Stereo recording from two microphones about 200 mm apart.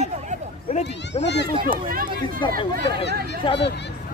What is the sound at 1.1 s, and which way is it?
Speech, 30° left (ahead or behind).